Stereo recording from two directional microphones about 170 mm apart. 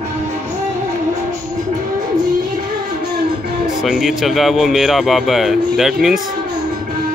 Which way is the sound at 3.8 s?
Centre (ahead or behind).